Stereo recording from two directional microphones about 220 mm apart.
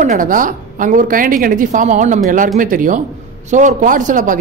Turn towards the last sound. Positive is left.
turn(degrees=-35)  # may be behind; listen again after turning